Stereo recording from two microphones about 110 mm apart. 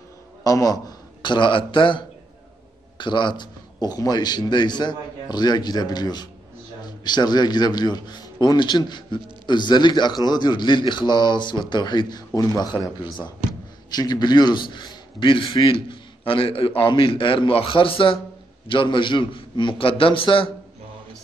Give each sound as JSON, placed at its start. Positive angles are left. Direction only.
{"t": 0.4, "sound": "a man's voice", "side_deg": 35}
{"t": 12.7, "sound": "a man's voice", "side_deg": 55}
{"t": 13.8, "sound": "a man's voice", "side_deg": 35}